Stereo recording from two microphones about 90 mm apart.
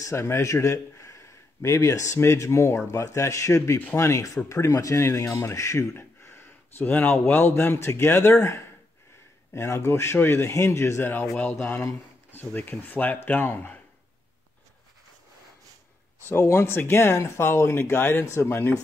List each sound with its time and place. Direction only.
0.0 s speech: 30° left (ahead or behind)
11.5 s speech: 5° left (ahead or behind)
12.3 s speech: 20° left (ahead or behind)
16.3 s speech: 30° left (ahead or behind)